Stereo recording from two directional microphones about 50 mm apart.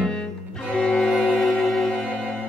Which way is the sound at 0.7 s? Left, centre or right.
Centre.